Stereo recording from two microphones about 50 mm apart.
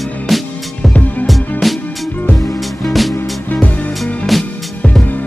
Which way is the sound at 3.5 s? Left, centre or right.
Left.